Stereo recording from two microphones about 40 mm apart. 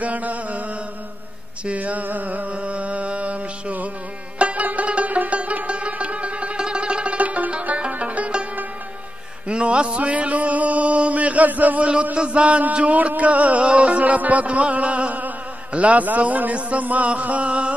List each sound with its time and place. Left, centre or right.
0.0 s chant: right
1.8 s a sound: right
2.5 s music: right
7.2 s music: right
9.5 s a sound: right
11.9 s music: right